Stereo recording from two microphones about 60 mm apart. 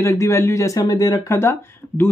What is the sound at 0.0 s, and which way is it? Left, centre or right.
Speech, left.